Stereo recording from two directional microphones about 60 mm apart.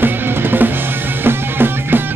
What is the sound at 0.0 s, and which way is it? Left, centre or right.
Music, right.